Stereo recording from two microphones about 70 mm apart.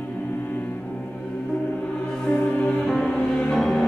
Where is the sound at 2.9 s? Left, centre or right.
Centre.